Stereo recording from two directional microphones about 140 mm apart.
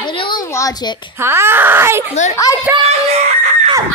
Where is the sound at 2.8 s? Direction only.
50° right (ahead or behind).